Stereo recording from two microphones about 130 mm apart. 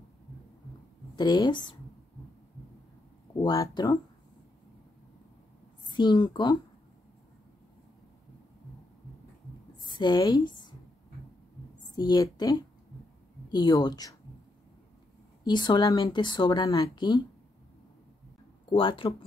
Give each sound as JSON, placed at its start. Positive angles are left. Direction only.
{"t": 1.1, "sound": "speech", "side_deg": 35}
{"t": 3.3, "sound": "speech", "side_deg": 25}
{"t": 5.9, "sound": "a woman's voice", "side_deg": 35}
{"t": 9.8, "sound": "a sound", "side_deg": 35}
{"t": 11.8, "sound": "speech", "side_deg": 35}
{"t": 15.4, "sound": "speech", "side_deg": 35}
{"t": 18.7, "sound": "speech", "side_deg": 40}